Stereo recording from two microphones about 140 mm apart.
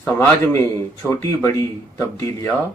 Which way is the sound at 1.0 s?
15° left (ahead or behind).